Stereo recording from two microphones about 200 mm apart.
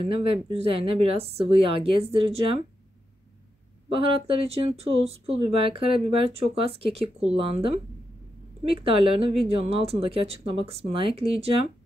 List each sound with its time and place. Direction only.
0.0 s speech: 30° right (ahead or behind)
3.9 s speech: 30° right (ahead or behind)
8.8 s speech: 25° right (ahead or behind)